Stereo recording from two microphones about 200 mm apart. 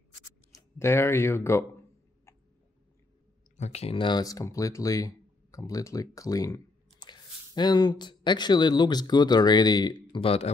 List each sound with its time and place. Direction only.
0.5 s speech: 15° left (ahead or behind)
3.5 s speech: 35° left (ahead or behind)